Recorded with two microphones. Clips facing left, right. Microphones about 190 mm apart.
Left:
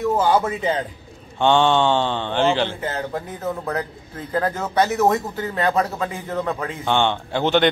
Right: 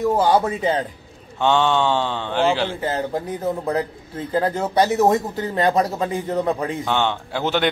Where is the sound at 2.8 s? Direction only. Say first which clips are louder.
Right 3 dB; 30° right (ahead or behind).